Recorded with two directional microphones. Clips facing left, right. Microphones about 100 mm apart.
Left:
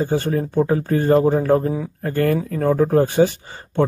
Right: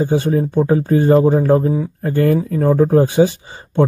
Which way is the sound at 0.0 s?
15° right (ahead or behind).